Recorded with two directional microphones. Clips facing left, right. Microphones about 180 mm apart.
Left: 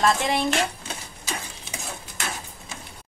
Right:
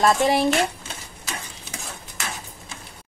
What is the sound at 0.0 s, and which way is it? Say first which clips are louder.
Speech: right 4 dB; 40° right (ahead or behind).